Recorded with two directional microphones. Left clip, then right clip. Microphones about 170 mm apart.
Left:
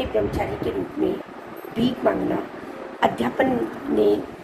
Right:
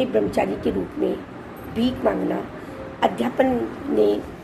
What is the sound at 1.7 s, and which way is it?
A woman's voice, 20° right (ahead or behind).